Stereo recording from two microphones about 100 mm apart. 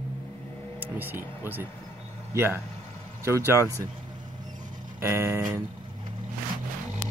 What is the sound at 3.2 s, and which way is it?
Speech, 30° right (ahead or behind).